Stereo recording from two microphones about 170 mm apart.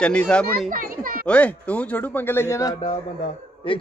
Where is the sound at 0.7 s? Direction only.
55° right (ahead or behind).